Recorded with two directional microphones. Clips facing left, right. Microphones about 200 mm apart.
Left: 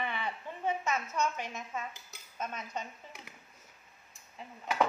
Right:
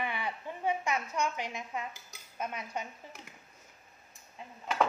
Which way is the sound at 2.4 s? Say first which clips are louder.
Right 1 dB; 10° right (ahead or behind).